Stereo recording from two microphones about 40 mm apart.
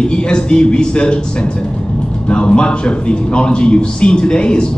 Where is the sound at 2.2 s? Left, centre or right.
Left.